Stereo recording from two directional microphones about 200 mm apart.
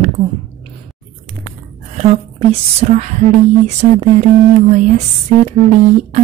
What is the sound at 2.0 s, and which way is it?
Speech, 35° right (ahead or behind).